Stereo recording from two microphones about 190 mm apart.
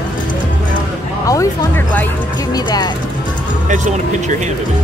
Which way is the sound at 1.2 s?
15° left (ahead or behind).